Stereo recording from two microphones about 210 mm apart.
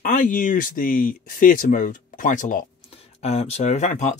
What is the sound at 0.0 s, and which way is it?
Speech, 40° left (ahead or behind).